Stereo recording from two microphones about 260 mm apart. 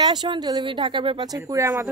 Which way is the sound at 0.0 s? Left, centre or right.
Centre.